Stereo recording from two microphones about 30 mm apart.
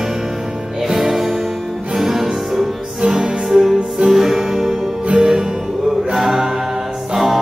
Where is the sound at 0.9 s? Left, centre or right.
Centre.